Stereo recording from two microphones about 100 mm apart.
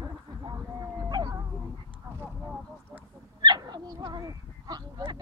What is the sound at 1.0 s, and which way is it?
Howl, 40° right (ahead or behind).